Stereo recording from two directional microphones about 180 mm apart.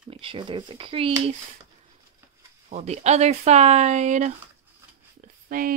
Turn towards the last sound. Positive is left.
turn(degrees=-55)  # may be behind; listen again after turning